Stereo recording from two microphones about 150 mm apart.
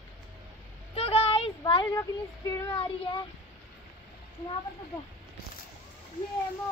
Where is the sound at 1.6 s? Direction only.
25° left (ahead or behind).